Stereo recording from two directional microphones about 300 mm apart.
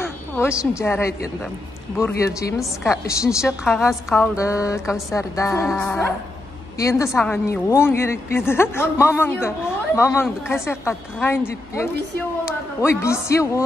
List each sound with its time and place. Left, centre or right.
0.0 s a sound: centre
0.7 s a woman's voice: centre
5.7 s music: centre
6.8 s a woman's voice: centre